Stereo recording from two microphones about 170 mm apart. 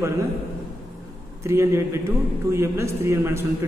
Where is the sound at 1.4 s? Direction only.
15° right (ahead or behind).